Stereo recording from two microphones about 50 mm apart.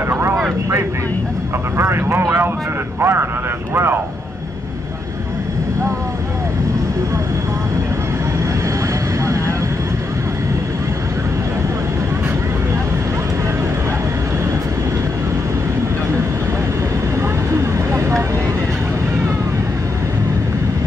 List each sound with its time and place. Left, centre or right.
1.8 s speech: right
17.2 s vehicle: right